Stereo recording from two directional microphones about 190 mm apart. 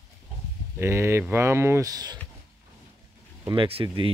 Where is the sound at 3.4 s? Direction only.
25° right (ahead or behind).